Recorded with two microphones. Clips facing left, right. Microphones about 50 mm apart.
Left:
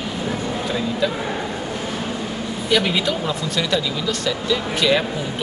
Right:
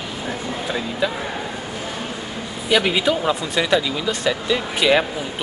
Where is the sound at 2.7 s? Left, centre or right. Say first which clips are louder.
Right 2 dB; centre.